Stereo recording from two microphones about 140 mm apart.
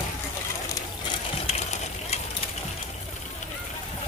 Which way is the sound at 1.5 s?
50° left (ahead or behind).